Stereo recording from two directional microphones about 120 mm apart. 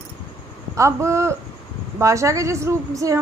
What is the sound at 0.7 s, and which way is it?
A woman's voice, 25° right (ahead or behind).